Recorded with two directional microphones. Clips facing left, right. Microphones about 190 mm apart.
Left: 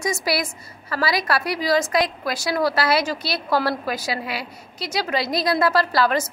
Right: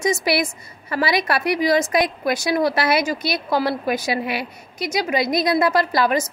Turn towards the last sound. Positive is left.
turn(degrees=-15)  # may be behind; listen again after turning